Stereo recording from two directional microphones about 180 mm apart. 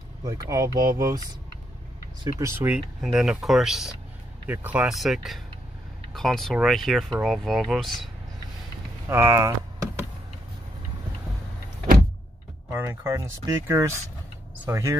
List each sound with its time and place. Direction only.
0.2 s speech: 20° right (ahead or behind)
2.4 s speech: 10° right (ahead or behind)
9.1 s speech: 15° right (ahead or behind)
12.6 s speech: 15° right (ahead or behind)